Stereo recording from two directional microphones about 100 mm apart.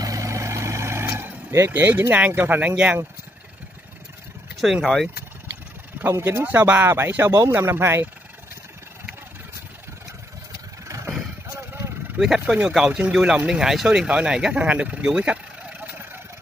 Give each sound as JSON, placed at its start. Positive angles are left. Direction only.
{"t": 0.0, "sound": "vehicle", "side_deg": -35}
{"t": 4.8, "sound": "speech", "side_deg": 0}
{"t": 5.9, "sound": "speech", "side_deg": -25}
{"t": 11.4, "sound": "vehicle", "side_deg": -25}
{"t": 12.2, "sound": "speech", "side_deg": -5}